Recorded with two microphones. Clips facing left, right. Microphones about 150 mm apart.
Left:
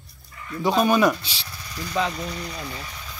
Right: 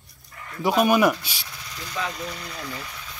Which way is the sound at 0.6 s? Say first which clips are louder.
Even; 20° left (ahead or behind).